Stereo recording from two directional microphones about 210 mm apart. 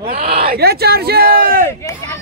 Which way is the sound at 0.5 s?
50° right (ahead or behind).